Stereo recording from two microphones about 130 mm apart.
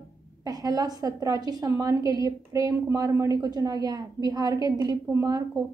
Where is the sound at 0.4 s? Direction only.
30° right (ahead or behind).